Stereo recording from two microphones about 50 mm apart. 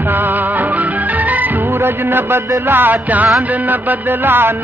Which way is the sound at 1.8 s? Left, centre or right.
Right.